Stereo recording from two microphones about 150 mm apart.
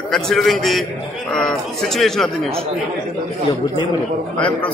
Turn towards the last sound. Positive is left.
turn(degrees=10)  # may be behind; listen again after turning